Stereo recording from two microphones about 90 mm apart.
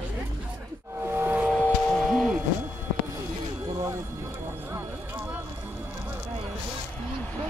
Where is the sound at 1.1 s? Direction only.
20° right (ahead or behind).